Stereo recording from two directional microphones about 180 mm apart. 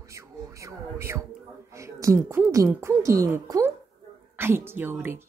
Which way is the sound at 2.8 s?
15° right (ahead or behind).